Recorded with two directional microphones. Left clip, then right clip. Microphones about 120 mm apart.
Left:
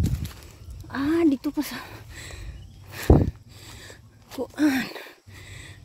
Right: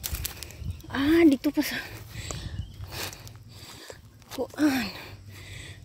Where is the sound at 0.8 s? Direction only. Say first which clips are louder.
Right 2 dB; 20° left (ahead or behind).